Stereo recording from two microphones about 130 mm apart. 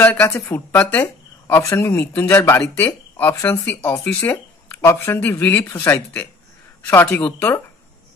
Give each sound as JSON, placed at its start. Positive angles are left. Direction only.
{"t": 0.0, "sound": "speech", "side_deg": 10}